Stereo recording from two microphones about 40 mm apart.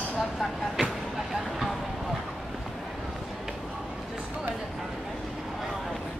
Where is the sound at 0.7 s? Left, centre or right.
Centre.